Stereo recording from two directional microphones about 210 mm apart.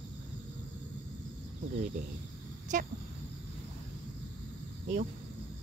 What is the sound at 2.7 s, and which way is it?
Speech, 35° right (ahead or behind).